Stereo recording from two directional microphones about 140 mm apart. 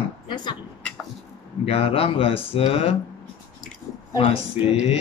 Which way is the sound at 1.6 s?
45° left (ahead or behind).